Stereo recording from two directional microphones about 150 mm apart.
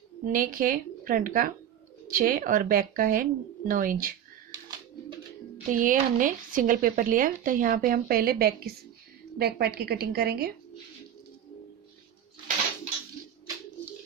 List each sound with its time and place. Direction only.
0.2 s speech: 70° right (ahead or behind)
5.7 s a woman's voice: 65° right (ahead or behind); by 10.5 s 90° right